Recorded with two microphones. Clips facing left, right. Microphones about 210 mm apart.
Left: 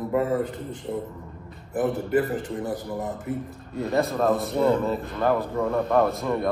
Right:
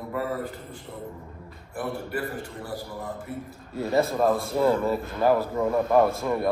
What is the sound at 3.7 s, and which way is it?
Speech, 5° right (ahead or behind).